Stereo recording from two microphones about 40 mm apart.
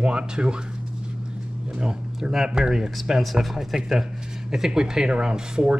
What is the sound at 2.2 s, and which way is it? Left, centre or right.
A man's voice, centre.